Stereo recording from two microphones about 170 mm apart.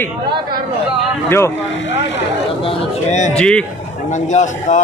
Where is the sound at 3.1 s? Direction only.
45° left (ahead or behind).